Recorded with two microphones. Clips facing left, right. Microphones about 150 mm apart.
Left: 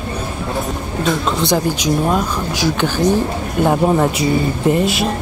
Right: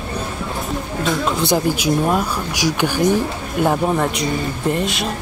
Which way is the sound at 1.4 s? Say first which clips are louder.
Left 1 dB; 10° right (ahead or behind).